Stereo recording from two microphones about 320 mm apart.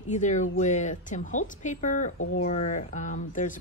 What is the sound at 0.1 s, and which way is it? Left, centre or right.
A woman's voice, left.